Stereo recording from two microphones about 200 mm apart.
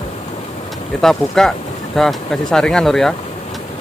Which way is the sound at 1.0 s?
Centre (ahead or behind).